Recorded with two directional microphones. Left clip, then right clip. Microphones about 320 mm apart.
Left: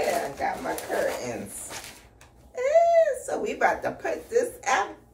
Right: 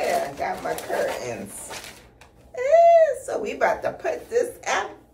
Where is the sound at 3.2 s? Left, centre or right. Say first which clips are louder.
Right 2 dB; centre.